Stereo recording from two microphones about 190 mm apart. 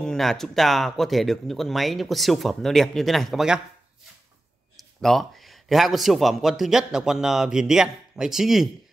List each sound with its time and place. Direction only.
0.0 s speech: 5° left (ahead or behind)
5.0 s speech: centre (ahead or behind)